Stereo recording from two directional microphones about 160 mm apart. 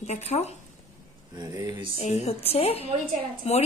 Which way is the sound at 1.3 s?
25° right (ahead or behind).